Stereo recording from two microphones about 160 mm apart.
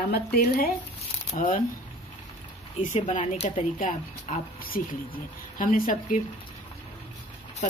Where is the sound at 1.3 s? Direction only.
45° left (ahead or behind).